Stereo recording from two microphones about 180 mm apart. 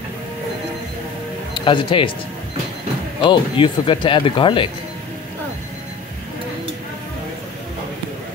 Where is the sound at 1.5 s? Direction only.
25° left (ahead or behind).